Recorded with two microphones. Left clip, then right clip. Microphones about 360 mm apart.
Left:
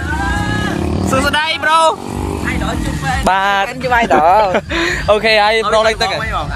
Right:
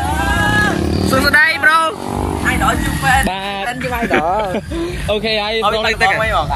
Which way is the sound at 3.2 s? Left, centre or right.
Centre.